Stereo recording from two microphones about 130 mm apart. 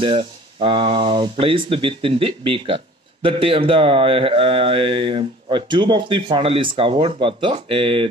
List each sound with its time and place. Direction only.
0.0 s speech: 45° right (ahead or behind)